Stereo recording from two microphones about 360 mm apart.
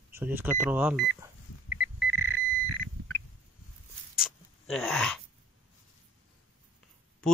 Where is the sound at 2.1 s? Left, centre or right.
Right.